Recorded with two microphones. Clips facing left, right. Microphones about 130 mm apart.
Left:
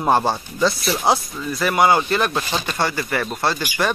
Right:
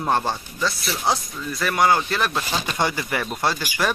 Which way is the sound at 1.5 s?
5° left (ahead or behind).